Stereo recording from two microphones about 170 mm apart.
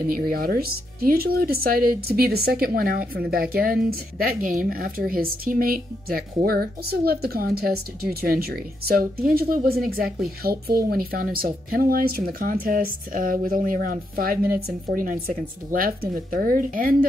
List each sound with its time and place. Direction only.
0.1 s speech: 60° right (ahead or behind)